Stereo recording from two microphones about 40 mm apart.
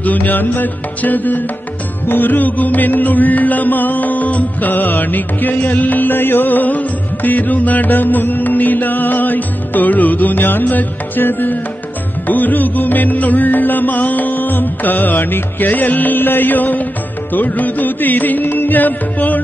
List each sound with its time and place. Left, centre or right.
0.0 s music: left